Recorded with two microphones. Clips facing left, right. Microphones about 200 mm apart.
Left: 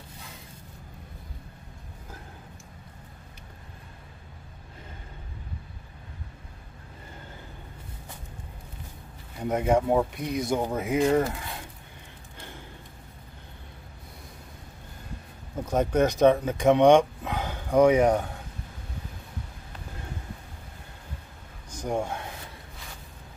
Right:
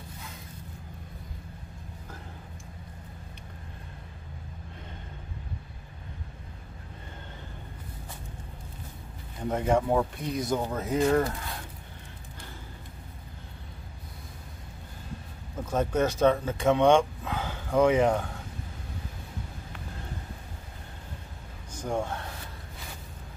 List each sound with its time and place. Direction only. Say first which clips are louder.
9.5 s speech: left 2 dB; 10° left (ahead or behind)
15.7 s speech: left 3 dB; 15° left (ahead or behind)
21.7 s speech: left 2 dB; 15° left (ahead or behind)